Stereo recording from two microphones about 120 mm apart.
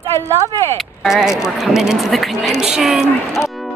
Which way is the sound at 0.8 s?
5° right (ahead or behind).